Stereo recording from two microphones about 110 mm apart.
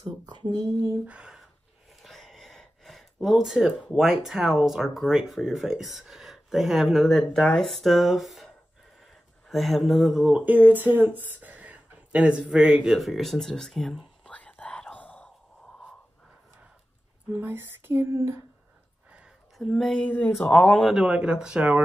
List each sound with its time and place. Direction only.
0.0 s a sound: 40° right (ahead or behind)
1.0 s speech: 10° right (ahead or behind)
2.0 s a sound: centre (ahead or behind)
3.9 s speech: 5° right (ahead or behind)
9.5 s speech: centre (ahead or behind)
17.3 s speech: 20° right (ahead or behind)
19.1 s a sound: 5° right (ahead or behind)
19.7 s speech: 5° left (ahead or behind)
20.9 s speech: 10° right (ahead or behind)